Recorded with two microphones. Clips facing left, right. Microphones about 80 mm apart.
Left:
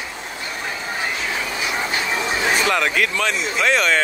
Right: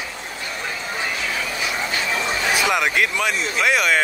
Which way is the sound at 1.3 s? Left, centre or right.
Left.